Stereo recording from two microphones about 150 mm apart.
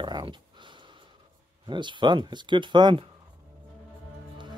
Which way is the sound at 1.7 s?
30° right (ahead or behind).